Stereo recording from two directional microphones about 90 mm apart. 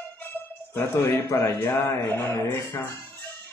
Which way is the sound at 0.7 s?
25° left (ahead or behind).